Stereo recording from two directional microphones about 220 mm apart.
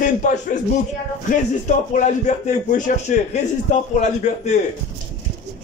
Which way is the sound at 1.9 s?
35° left (ahead or behind).